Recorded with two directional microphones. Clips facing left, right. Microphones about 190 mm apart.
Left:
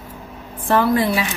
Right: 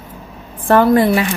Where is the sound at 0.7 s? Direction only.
55° right (ahead or behind).